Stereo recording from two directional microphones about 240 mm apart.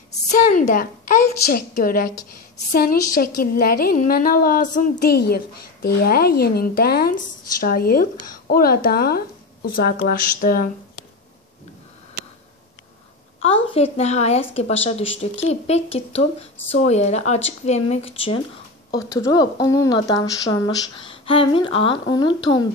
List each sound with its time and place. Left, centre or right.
0.3 s a woman's voice: left
13.4 s a woman's voice: left